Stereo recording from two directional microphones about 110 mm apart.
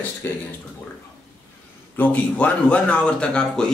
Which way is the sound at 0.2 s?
20° left (ahead or behind).